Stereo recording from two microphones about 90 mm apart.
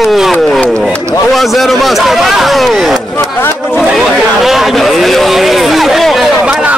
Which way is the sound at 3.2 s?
30° left (ahead or behind).